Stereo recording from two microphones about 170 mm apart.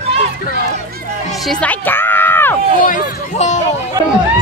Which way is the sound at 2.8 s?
50° left (ahead or behind).